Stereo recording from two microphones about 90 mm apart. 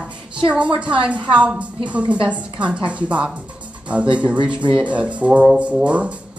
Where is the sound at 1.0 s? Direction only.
15° right (ahead or behind).